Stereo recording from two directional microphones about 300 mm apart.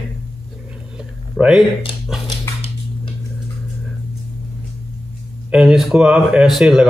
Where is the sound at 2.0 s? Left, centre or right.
Centre.